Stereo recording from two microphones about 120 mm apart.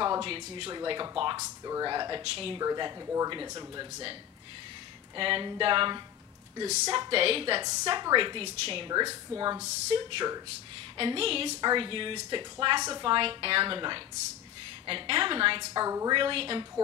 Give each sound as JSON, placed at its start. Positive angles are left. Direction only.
{"t": 0.0, "sound": "a sound", "side_deg": -35}
{"t": 0.3, "sound": "speech", "side_deg": -50}
{"t": 0.7, "sound": "a woman's voice", "side_deg": -35}
{"t": 1.4, "sound": "a woman's voice", "side_deg": -25}
{"t": 2.2, "sound": "speech", "side_deg": -50}
{"t": 2.6, "sound": "a woman's voice", "side_deg": -30}
{"t": 5.1, "sound": "speech", "side_deg": -45}
{"t": 7.6, "sound": "a woman's voice", "side_deg": -35}
{"t": 8.9, "sound": "a woman's voice", "side_deg": -30}
{"t": 9.9, "sound": "a woman's voice", "side_deg": -40}
{"t": 11.0, "sound": "speech", "side_deg": -50}
{"t": 13.0, "sound": "speech", "side_deg": -45}
{"t": 15.8, "sound": "speech", "side_deg": -30}
{"t": 16.2, "sound": "speech", "side_deg": -50}